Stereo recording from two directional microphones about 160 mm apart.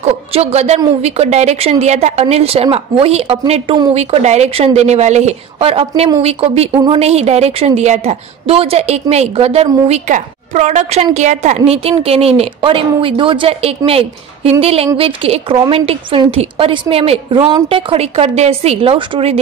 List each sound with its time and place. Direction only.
0.0 s a woman's voice: 40° right (ahead or behind)